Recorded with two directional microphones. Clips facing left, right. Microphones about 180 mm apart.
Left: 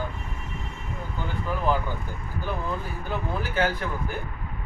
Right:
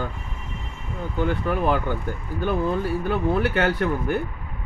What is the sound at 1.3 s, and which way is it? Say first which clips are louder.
Speech: right 2 dB; 70° right (ahead or behind).